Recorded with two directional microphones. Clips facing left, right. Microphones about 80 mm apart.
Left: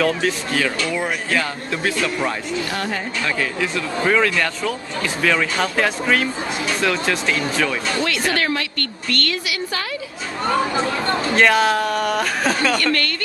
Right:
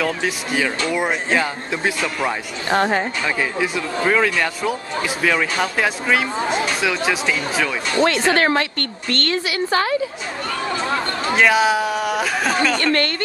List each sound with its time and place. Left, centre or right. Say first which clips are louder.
0.0 s speech: left 2 dB; centre
2.7 s a woman's voice: right 12 dB; right
3.3 s speech: right 1 dB; centre
8.0 s a woman's voice: right 8 dB; right
11.3 s speech: right 1 dB; centre
12.7 s speech: right 1 dB; right